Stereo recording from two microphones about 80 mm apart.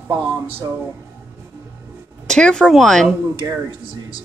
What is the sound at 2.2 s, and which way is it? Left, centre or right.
Speech, centre.